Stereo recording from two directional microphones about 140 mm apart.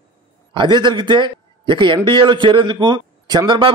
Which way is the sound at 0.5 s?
35° right (ahead or behind).